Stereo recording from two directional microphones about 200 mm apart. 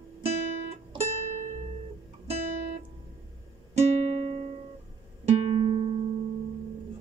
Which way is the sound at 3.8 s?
30° right (ahead or behind).